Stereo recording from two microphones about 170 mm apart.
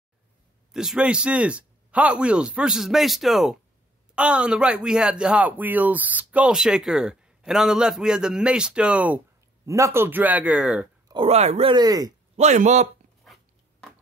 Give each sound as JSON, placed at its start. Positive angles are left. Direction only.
{"t": 0.7, "sound": "speech", "side_deg": -5}
{"t": 11.1, "sound": "speech", "side_deg": -35}
{"t": 11.7, "sound": "speech", "side_deg": -20}
{"t": 12.4, "sound": "speech", "side_deg": -45}